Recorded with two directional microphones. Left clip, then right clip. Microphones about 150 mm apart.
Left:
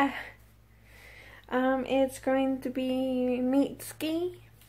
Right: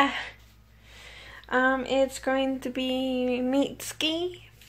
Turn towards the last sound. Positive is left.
turn(degrees=15)  # may be behind; listen again after turning